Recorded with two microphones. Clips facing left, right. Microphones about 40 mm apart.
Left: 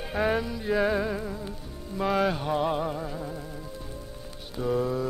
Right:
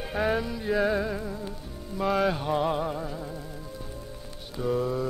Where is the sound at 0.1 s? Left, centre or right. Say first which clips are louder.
Left 1 dB; centre.